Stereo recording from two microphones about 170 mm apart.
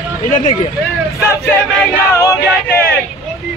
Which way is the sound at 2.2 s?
15° left (ahead or behind).